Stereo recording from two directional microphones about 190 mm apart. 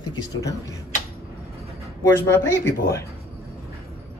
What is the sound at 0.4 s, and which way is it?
Speech, 15° left (ahead or behind).